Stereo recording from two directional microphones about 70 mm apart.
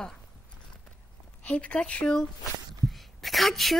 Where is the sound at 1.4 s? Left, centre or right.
Centre.